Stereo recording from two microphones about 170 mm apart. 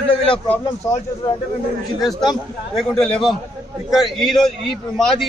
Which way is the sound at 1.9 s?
Centre (ahead or behind).